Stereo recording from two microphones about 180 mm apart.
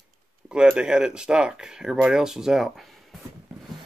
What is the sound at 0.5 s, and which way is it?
Speech, 5° right (ahead or behind).